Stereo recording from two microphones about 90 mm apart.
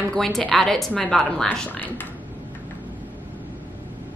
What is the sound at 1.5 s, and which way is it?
Speech, 15° left (ahead or behind).